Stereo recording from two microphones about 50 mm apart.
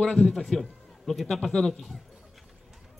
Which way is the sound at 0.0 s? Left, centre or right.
Centre.